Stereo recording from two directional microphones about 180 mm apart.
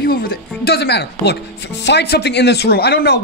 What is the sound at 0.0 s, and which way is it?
Speech, 55° left (ahead or behind).